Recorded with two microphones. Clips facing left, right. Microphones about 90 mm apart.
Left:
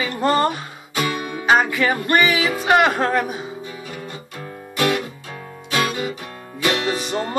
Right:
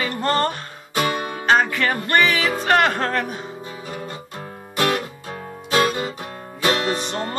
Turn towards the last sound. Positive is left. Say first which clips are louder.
# left 1 dB
turn(degrees=5)  # may be behind; listen again after turning